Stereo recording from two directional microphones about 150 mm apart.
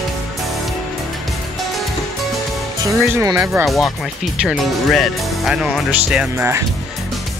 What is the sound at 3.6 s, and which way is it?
Speech, centre (ahead or behind).